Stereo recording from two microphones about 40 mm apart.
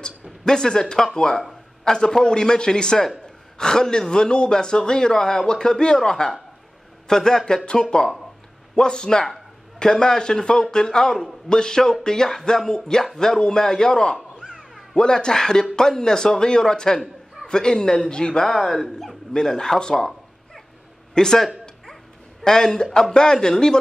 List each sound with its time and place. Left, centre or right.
0.0 s speech: centre
14.4 s a sound: centre
15.0 s speech: centre
18.7 s speech: centre
21.1 s a man's voice: centre